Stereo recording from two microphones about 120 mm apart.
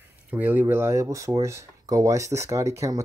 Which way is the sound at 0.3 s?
15° right (ahead or behind).